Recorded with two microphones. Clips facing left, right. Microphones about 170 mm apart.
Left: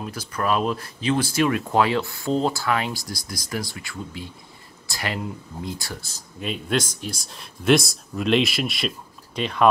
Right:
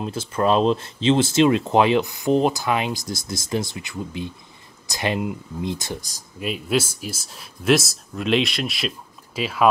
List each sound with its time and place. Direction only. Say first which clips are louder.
0.0 s speech: right 5 dB; 25° right (ahead or behind)
6.4 s speech: right 2 dB; 5° right (ahead or behind)